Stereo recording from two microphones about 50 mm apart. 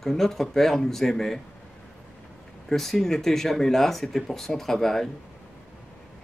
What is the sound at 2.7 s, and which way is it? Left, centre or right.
Speech, centre.